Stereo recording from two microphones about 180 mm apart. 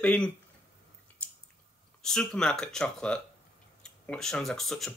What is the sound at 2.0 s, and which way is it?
Speech, 5° left (ahead or behind).